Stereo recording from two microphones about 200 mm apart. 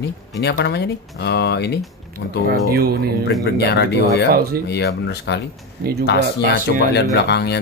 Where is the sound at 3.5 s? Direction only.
55° left (ahead or behind).